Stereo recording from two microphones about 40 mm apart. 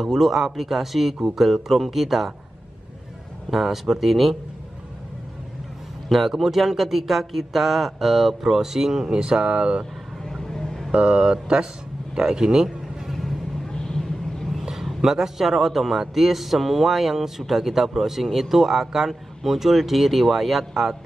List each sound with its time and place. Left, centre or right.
0.0 s a man's voice: centre
3.4 s a man's voice: centre
6.0 s a man's voice: centre
9.1 s a sound: right
10.2 s vehicle: centre
10.9 s a sound: right
12.2 s speech: centre
13.1 s vehicle: centre
13.7 s vehicle: centre
14.6 s a sound: centre
15.0 s a man's voice: centre